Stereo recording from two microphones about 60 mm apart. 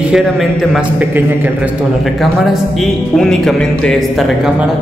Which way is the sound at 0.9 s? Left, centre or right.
Right.